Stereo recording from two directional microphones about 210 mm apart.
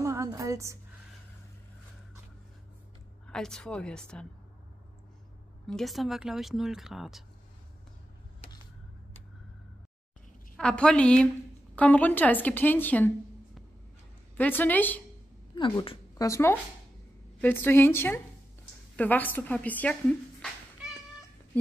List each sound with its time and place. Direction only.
0.0 s music: 15° right (ahead or behind)
3.3 s speech: 5° left (ahead or behind)
5.7 s speech: centre (ahead or behind)
10.5 s a woman's voice: 5° left (ahead or behind)
14.3 s a woman's voice: 10° left (ahead or behind)
15.5 s a woman's voice: 20° left (ahead or behind); by 20.2 s 5° left (ahead or behind)